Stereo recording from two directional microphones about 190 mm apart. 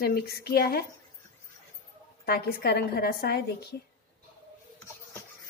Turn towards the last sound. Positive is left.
turn(degrees=55)  # may be behind; listen again after turning